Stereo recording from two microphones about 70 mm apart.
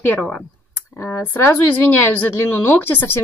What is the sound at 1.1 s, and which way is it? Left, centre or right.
Speech, left.